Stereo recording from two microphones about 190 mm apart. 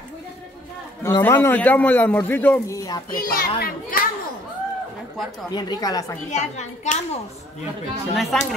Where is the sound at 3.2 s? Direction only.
50° left (ahead or behind).